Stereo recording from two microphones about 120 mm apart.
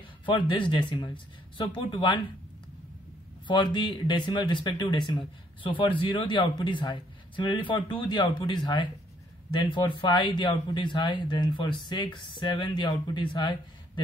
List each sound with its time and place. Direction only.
0.2 s speech: 40° left (ahead or behind)
3.4 s speech: 40° left (ahead or behind)